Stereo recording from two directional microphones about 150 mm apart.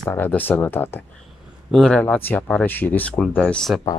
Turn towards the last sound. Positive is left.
turn(degrees=5)  # may be behind; listen again after turning